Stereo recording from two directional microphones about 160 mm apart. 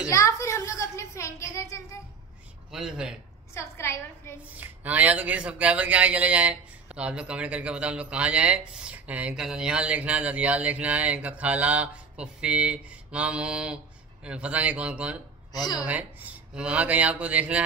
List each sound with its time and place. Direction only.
0.1 s a woman's voice: 20° left (ahead or behind)
2.7 s speech: 5° right (ahead or behind)
3.5 s a woman's voice: 15° left (ahead or behind)
4.6 s a man's voice: 10° right (ahead or behind)
15.5 s a woman's voice: 25° left (ahead or behind)
15.8 s a man's voice: 10° right (ahead or behind)